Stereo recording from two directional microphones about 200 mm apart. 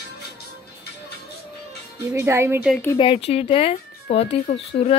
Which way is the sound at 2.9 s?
25° left (ahead or behind).